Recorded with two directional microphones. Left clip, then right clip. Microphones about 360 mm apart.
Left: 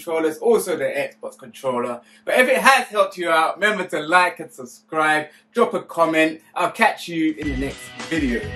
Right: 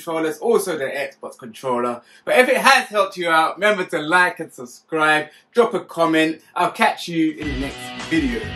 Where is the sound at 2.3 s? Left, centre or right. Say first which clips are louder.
Right 1 dB; centre.